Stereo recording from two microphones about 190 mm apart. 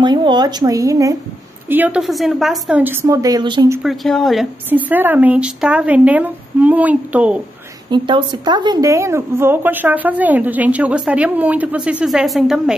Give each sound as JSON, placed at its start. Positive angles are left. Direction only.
{"t": 0.0, "sound": "speech", "side_deg": -25}
{"t": 3.8, "sound": "speech", "side_deg": 0}
{"t": 7.9, "sound": "speech", "side_deg": -25}